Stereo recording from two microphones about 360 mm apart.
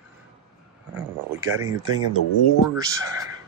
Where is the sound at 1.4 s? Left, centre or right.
Centre.